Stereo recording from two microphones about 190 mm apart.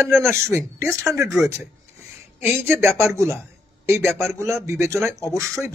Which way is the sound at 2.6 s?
15° right (ahead or behind).